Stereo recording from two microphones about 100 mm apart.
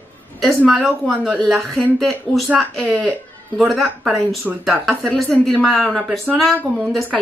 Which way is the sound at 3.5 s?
Centre (ahead or behind).